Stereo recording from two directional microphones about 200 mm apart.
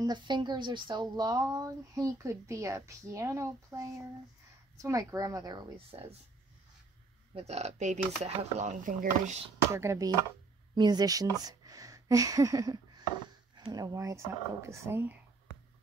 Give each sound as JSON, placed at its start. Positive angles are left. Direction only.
{"t": 0.0, "sound": "speech", "side_deg": -20}
{"t": 4.8, "sound": "a woman's voice", "side_deg": -15}
{"t": 7.3, "sound": "speech", "side_deg": -30}
{"t": 9.7, "sound": "a woman's voice", "side_deg": -15}